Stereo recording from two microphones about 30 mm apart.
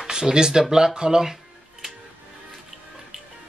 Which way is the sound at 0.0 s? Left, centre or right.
Right.